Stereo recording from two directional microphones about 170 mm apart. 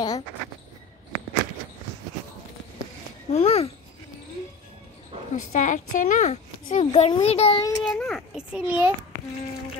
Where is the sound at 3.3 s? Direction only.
35° left (ahead or behind).